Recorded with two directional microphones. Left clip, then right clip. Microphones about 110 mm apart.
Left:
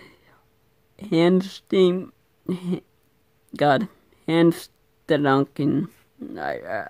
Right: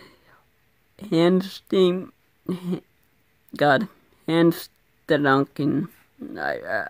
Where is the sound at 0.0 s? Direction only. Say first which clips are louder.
Even; centre (ahead or behind).